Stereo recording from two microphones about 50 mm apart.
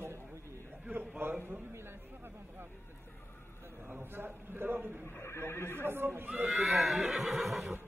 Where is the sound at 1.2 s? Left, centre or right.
Right.